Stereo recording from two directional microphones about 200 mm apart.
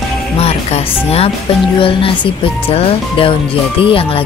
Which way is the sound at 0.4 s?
30° left (ahead or behind).